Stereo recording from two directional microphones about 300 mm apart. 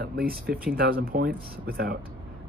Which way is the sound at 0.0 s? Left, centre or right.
Right.